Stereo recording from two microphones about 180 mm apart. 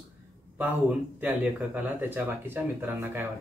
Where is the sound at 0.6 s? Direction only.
10° right (ahead or behind).